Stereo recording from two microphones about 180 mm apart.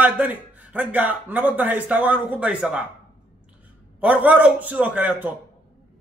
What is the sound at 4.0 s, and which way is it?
A man's voice, 10° right (ahead or behind).